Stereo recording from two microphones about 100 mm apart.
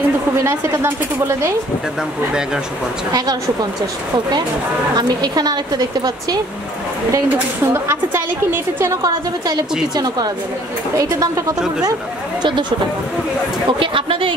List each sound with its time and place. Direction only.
0.4 s a woman's voice: 25° right (ahead or behind)
3.1 s a woman's voice: 40° right (ahead or behind)
4.9 s a woman's voice: 40° right (ahead or behind)
7.6 s a woman's voice: 25° right (ahead or behind)
9.0 s a woman's voice: 40° right (ahead or behind)
12.4 s speech: 50° right (ahead or behind)
13.7 s speech: 60° right (ahead or behind)